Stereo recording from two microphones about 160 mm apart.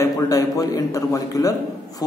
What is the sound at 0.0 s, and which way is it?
A man's voice, 20° left (ahead or behind).